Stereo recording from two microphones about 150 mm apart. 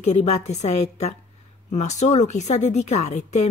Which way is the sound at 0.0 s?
45° left (ahead or behind).